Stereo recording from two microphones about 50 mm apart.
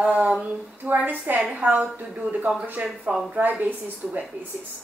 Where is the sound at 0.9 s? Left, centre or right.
Right.